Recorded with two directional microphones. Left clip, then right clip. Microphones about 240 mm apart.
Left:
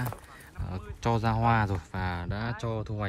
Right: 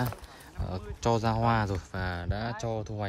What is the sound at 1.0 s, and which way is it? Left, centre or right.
Speech, centre.